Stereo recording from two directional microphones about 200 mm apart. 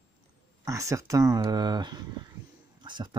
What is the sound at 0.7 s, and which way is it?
Speech, 15° right (ahead or behind).